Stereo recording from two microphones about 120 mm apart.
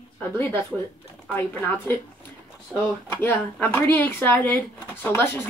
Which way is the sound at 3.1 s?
15° left (ahead or behind).